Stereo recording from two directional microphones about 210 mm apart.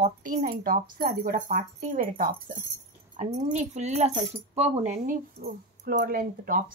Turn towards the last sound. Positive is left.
turn(degrees=-40)  # may be behind; listen again after turning